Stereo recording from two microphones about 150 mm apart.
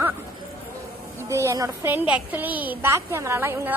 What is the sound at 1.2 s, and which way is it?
A woman's voice, 20° right (ahead or behind).